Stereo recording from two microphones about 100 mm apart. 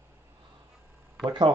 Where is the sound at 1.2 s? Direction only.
45° right (ahead or behind).